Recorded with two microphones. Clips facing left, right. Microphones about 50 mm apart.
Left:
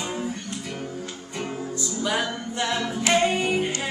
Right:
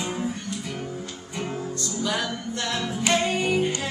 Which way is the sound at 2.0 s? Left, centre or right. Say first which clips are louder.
Left 2 dB; centre.